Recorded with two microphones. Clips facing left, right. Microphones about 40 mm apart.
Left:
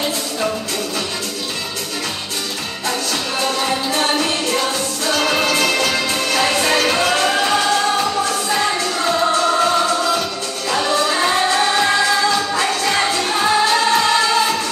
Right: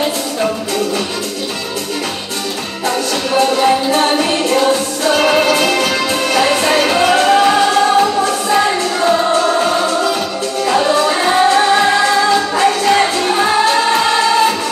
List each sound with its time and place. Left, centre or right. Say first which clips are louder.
3.9 s music: right 5 dB; centre